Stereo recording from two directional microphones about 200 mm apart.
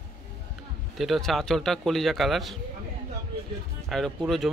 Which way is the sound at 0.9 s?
Centre (ahead or behind).